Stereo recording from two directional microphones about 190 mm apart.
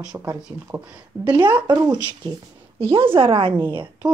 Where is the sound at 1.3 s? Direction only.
25° right (ahead or behind).